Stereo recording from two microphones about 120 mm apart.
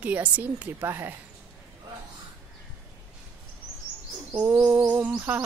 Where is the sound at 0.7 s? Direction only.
20° right (ahead or behind).